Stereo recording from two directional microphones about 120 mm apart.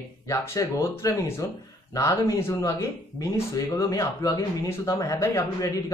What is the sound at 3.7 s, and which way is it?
Speech, 30° left (ahead or behind).